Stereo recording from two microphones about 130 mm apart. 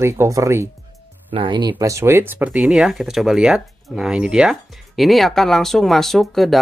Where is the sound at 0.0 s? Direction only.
20° right (ahead or behind).